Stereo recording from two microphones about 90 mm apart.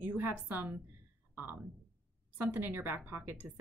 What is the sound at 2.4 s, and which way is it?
Speech, 20° right (ahead or behind).